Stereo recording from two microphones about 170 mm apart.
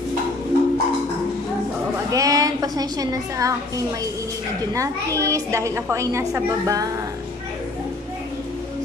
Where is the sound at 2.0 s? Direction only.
20° right (ahead or behind).